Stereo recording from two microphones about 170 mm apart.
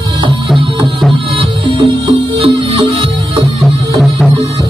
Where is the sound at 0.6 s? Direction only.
30° right (ahead or behind).